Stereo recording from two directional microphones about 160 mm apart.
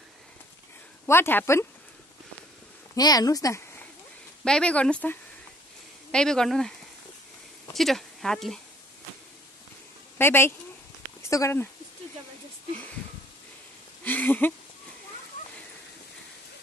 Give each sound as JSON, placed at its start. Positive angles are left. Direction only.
{"t": 1.0, "sound": "speech", "side_deg": 15}
{"t": 3.0, "sound": "speech", "side_deg": 25}
{"t": 4.5, "sound": "speech", "side_deg": 5}
{"t": 7.7, "sound": "speech", "side_deg": 0}
{"t": 10.1, "sound": "speech", "side_deg": 15}
{"t": 14.0, "sound": "a sound", "side_deg": 10}